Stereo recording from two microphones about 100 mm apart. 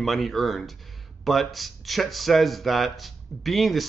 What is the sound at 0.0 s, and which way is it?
Speech, centre (ahead or behind).